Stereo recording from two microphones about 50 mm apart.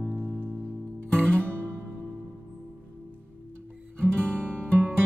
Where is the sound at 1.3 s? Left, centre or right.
Right.